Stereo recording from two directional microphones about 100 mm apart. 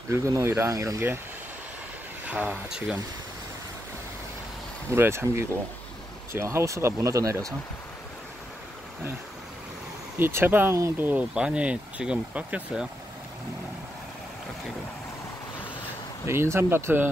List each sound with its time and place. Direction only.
0.1 s speech: 25° right (ahead or behind)
2.2 s speech: 15° right (ahead or behind)
4.9 s speech: 25° right (ahead or behind)
10.1 s speech: 20° right (ahead or behind)
16.3 s speech: 25° right (ahead or behind)